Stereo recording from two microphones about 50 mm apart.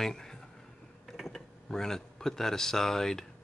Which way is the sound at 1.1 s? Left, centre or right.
Centre.